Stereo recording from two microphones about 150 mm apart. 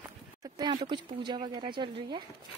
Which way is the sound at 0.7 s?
30° right (ahead or behind).